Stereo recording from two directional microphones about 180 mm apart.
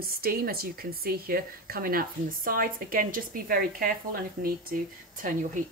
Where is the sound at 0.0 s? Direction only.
55° right (ahead or behind).